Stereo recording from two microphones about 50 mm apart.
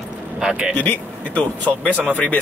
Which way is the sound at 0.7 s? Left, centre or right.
Left.